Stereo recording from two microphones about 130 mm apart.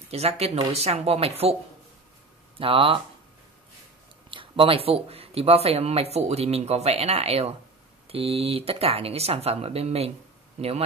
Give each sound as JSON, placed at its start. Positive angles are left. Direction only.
{"t": 0.1, "sound": "speech", "side_deg": -50}
{"t": 2.6, "sound": "speech", "side_deg": -45}
{"t": 4.3, "sound": "speech", "side_deg": -45}